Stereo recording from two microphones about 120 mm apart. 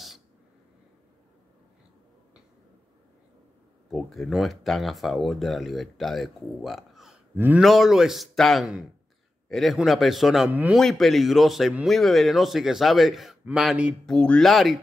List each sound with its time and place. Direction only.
3.9 s speech: centre (ahead or behind)
7.3 s speech: 15° right (ahead or behind)
7.6 s speech: centre (ahead or behind)
14.0 s speech: 10° left (ahead or behind)